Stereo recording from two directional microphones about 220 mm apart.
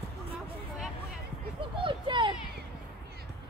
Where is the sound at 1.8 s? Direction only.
20° right (ahead or behind).